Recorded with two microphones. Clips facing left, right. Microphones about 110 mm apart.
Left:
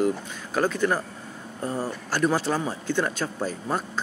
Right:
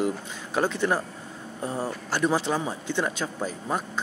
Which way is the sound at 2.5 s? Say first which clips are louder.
Left 1 dB; 10° right (ahead or behind).